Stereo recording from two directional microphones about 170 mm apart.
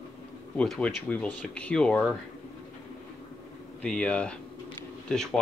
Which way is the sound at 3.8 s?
5° left (ahead or behind).